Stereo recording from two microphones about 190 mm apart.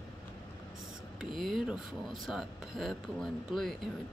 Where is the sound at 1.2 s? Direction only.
Centre (ahead or behind).